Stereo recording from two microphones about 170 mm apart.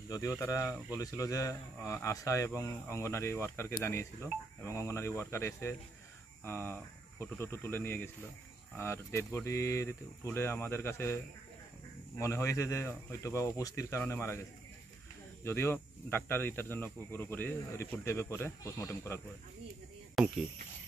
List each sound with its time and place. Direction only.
0.1 s speech: 20° left (ahead or behind)
12.2 s speech: 15° left (ahead or behind)
15.4 s speech: 15° left (ahead or behind)
20.2 s speech: centre (ahead or behind)